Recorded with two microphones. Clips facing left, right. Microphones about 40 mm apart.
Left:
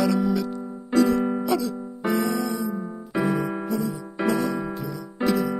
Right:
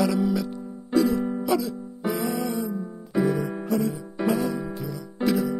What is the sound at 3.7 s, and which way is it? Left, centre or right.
Music, right.